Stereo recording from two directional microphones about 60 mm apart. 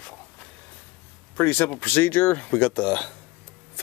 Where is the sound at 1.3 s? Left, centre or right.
Left.